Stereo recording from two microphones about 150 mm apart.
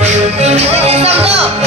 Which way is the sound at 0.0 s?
45° right (ahead or behind).